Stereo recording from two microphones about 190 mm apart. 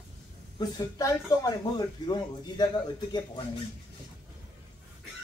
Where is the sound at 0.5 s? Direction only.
20° left (ahead or behind).